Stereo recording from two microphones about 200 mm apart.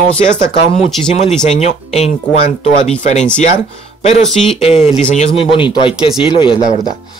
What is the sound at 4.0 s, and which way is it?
Speech, 35° left (ahead or behind).